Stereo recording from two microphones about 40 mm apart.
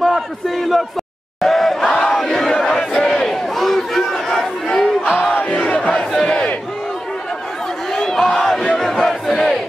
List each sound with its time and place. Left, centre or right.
0.0 s a man's voice: centre
1.4 s crowd: centre
2.1 s battle cry: centre
3.0 s crowd: centre
5.3 s battle cry: left
5.8 s battle cry: centre
7.9 s a sound: centre
8.7 s battle cry: centre